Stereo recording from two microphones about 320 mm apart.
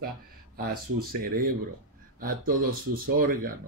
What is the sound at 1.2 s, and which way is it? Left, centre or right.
Speech, right.